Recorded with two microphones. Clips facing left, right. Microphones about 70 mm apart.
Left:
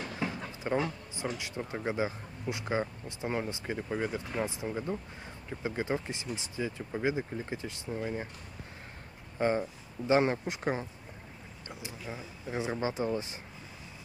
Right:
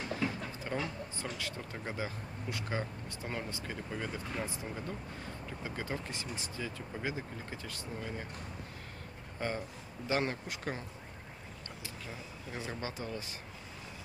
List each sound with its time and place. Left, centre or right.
0.2 s speech: left
9.4 s speech: left